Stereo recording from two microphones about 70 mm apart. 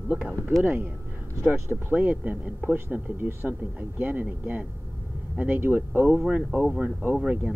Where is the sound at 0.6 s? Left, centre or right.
Right.